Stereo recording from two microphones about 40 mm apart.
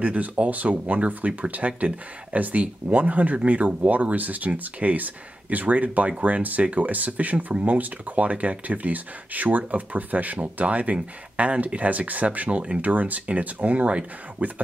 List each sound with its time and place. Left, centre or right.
0.0 s speech: right